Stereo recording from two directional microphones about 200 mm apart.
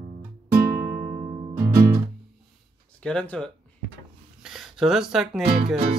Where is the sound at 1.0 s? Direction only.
45° right (ahead or behind).